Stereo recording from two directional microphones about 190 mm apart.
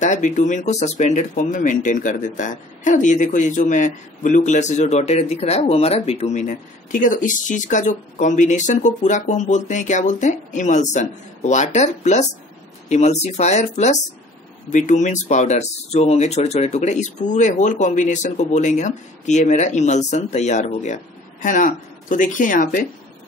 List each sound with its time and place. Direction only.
0.0 s speech: 40° left (ahead or behind)